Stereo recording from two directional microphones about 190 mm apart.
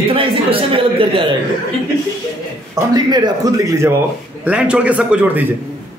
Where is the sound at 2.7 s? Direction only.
20° right (ahead or behind).